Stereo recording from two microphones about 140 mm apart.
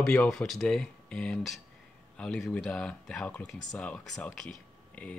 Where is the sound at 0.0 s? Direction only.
10° left (ahead or behind).